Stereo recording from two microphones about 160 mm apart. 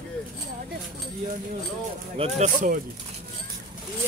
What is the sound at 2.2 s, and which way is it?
Speech, 35° right (ahead or behind).